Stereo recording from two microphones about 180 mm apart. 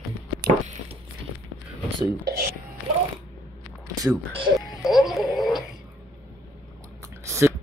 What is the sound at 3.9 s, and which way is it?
Speech, 25° right (ahead or behind).